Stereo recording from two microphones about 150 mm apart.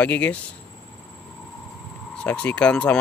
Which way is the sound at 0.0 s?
10° left (ahead or behind).